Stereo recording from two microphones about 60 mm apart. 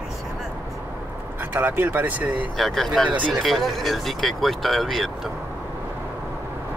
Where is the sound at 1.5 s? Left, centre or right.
Right.